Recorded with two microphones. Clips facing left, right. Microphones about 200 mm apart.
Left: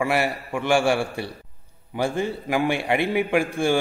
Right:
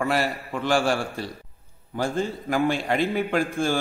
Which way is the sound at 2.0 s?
15° left (ahead or behind).